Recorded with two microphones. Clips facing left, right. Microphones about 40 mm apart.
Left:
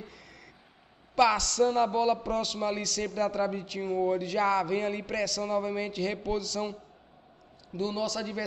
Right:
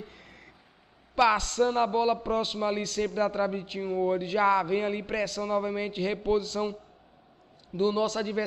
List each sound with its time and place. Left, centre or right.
0.0 s a sound: right
1.3 s a man's voice: right
7.7 s a man's voice: right